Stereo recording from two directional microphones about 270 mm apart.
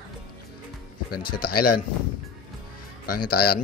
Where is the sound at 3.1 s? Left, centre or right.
Left.